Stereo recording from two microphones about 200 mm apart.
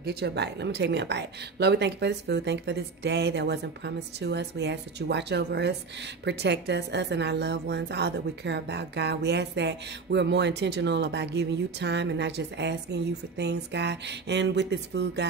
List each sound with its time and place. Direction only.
0.0 s a woman's voice: 55° right (ahead or behind)